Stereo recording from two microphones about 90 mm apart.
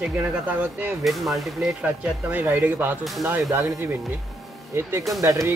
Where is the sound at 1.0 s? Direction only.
Centre (ahead or behind).